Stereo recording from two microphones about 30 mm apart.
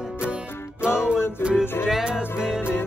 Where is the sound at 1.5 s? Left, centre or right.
Centre.